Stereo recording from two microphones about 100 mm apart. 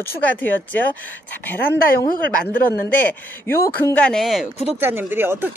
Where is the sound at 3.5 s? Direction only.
30° left (ahead or behind).